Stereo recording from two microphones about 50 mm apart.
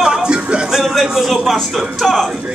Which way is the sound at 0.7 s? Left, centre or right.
Centre.